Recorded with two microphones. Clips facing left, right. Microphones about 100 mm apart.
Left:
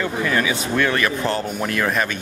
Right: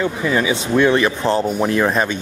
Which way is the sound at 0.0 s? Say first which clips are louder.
Right 3 dB; 15° right (ahead or behind).